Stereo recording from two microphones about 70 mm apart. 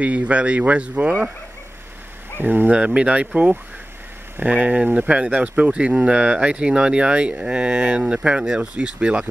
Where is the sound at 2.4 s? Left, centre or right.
Right.